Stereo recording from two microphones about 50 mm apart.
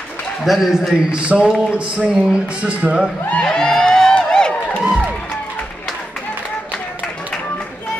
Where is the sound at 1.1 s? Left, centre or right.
Centre.